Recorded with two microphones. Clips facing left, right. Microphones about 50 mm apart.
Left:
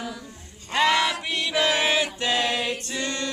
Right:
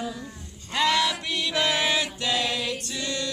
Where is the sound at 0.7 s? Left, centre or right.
Left.